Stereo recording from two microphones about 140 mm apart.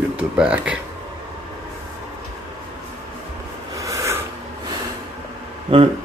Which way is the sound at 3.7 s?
25° right (ahead or behind).